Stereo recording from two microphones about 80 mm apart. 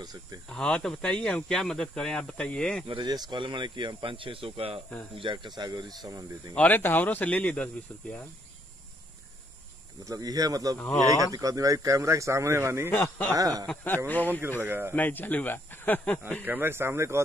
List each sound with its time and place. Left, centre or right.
0.0 s speech: right
0.5 s speech: centre
2.9 s speech: right
6.5 s speech: left
10.0 s speech: right
13.4 s speech: right
13.8 s speech: left
14.6 s speech: right
15.0 s speech: left
16.4 s speech: right